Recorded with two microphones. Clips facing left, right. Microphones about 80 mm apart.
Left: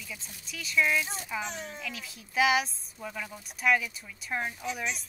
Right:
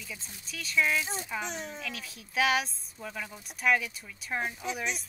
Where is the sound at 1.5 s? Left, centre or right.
Centre.